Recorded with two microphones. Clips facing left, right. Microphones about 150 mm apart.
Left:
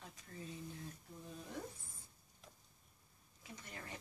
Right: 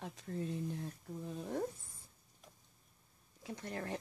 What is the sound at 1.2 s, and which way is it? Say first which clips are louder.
Speech: right 9 dB; 55° right (ahead or behind).